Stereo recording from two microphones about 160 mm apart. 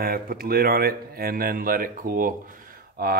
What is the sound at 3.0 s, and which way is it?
Speech, 75° right (ahead or behind).